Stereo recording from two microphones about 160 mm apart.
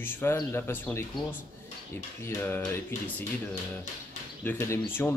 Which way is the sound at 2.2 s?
15° left (ahead or behind).